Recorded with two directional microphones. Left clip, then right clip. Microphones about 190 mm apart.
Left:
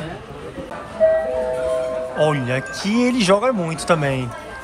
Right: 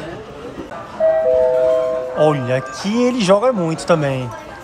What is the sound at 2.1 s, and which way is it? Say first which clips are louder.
Speech: right 3 dB; 10° right (ahead or behind).